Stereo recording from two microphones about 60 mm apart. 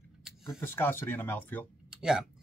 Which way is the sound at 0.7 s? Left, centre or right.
Left.